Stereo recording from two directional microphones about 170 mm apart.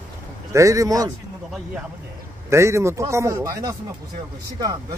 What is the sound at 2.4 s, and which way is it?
A man's voice, 15° right (ahead or behind).